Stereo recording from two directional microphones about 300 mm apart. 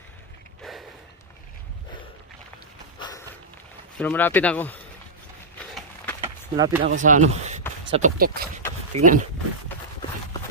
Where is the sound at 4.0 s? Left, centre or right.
Centre.